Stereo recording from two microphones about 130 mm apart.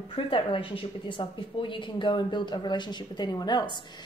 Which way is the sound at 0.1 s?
40° left (ahead or behind).